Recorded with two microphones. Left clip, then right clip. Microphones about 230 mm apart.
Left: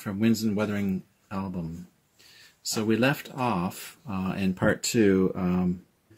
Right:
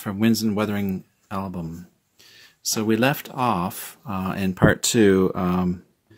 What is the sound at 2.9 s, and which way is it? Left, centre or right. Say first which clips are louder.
Speech: right 3 dB; right.